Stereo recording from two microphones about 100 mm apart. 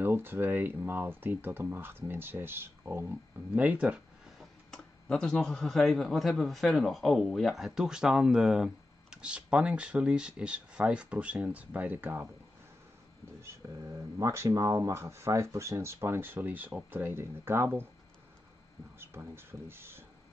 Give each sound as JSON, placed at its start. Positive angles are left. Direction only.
{"t": 0.0, "sound": "speech", "side_deg": -20}
{"t": 4.4, "sound": "speech", "side_deg": 5}
{"t": 13.6, "sound": "speech", "side_deg": -30}
{"t": 18.9, "sound": "speech", "side_deg": -25}